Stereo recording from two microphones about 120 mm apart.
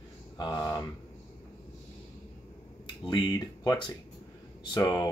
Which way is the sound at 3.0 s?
35° left (ahead or behind).